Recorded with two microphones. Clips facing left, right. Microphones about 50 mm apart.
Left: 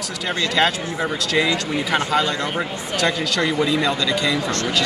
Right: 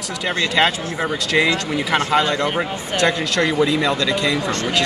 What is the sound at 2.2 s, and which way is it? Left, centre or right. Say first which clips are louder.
Speech: right 3 dB; right.